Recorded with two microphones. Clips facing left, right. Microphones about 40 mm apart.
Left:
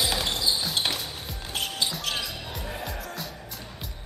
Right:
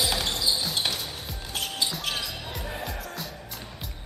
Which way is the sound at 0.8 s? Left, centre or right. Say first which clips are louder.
Left 1 dB; centre.